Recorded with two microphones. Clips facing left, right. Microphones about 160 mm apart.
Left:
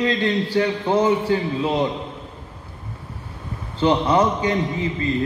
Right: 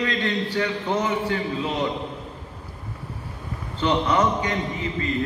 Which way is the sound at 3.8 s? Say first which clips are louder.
Left 4 dB; 30° left (ahead or behind).